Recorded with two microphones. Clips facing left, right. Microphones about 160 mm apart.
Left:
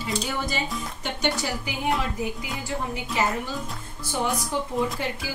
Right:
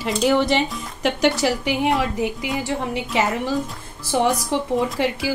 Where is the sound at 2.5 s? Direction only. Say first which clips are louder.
Right 7 dB; 90° right.